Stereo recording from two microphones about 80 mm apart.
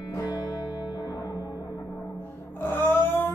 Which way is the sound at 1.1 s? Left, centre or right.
Left.